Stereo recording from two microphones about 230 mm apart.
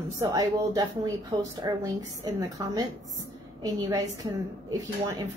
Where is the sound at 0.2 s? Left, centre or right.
Centre.